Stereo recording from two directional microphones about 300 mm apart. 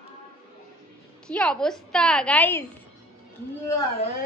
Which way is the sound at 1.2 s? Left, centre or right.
Centre.